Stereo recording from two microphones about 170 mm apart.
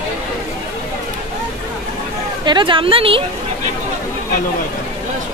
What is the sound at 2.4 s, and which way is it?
Speech, 25° right (ahead or behind).